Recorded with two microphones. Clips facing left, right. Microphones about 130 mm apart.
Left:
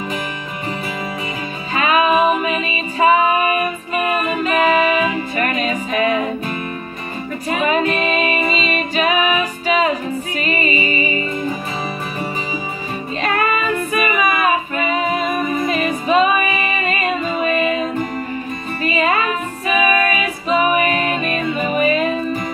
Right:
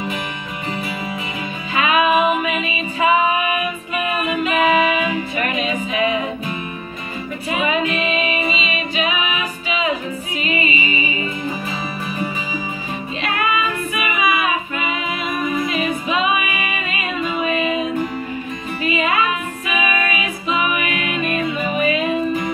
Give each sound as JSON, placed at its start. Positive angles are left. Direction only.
{"t": 1.7, "sound": "music", "side_deg": 40}
{"t": 13.2, "sound": "female singing", "side_deg": 40}
{"t": 18.8, "sound": "music", "side_deg": 40}